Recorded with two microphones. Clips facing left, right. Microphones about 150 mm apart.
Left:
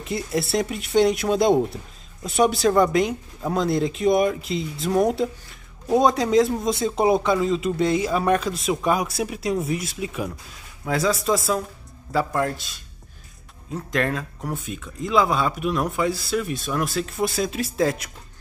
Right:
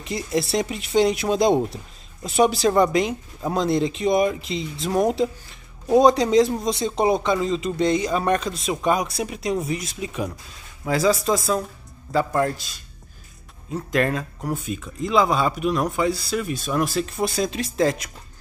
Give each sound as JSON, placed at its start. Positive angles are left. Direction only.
{"t": 0.0, "sound": "speech", "side_deg": 0}